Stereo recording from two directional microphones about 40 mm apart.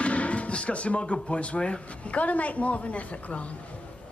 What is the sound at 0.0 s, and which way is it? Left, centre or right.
A woman's voice, left.